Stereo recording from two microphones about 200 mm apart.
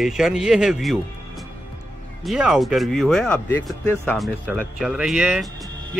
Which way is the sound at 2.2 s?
Centre (ahead or behind).